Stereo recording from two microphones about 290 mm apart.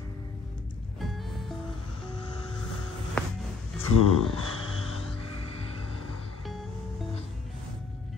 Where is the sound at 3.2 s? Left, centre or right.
Centre.